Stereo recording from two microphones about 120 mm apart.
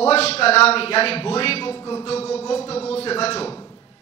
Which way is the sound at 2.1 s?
55° left (ahead or behind).